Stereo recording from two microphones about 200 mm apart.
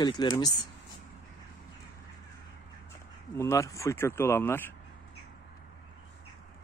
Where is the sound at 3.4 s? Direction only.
15° left (ahead or behind).